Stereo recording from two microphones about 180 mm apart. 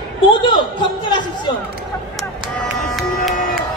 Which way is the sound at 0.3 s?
25° left (ahead or behind).